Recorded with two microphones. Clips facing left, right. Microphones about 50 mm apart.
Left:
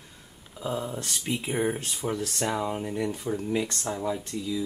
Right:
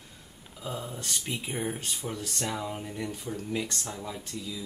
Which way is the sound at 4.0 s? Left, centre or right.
Centre.